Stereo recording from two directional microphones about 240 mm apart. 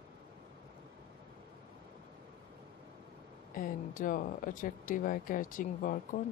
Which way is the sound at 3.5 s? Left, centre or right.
Left.